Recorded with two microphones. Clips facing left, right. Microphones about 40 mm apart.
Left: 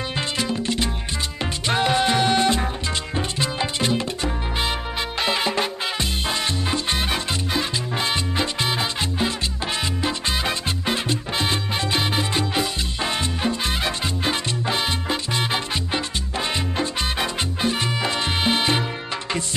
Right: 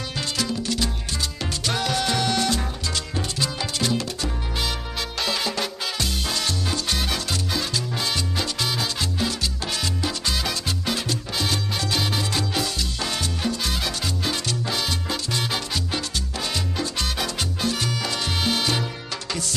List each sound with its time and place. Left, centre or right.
0.4 s music: left